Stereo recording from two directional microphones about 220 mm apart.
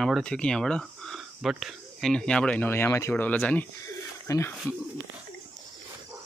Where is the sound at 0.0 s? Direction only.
5° left (ahead or behind).